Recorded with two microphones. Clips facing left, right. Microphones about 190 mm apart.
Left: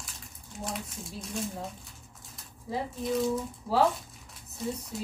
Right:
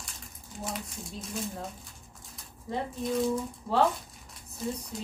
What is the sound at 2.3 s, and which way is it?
A woman's voice, centre (ahead or behind).